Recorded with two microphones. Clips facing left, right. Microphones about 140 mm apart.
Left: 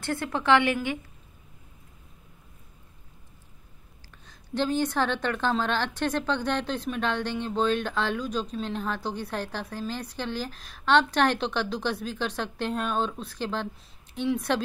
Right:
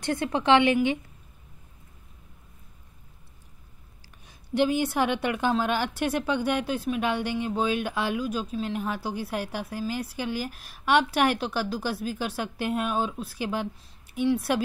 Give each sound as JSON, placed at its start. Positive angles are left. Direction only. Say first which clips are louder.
{"t": 0.0, "sound": "a woman's voice", "louder": "right 3 dB", "side_deg": -20}
{"t": 4.3, "sound": "a woman's voice", "louder": "right 3 dB", "side_deg": -10}